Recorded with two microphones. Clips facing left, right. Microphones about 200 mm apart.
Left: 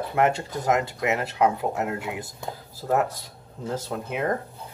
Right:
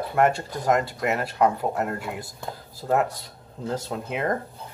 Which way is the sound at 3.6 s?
Centre (ahead or behind).